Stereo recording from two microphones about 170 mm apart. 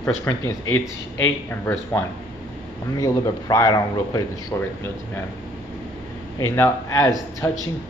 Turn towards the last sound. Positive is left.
turn(degrees=15)  # may be behind; listen again after turning